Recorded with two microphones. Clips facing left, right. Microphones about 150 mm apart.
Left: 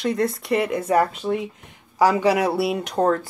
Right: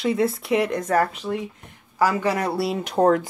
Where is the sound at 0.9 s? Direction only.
15° left (ahead or behind).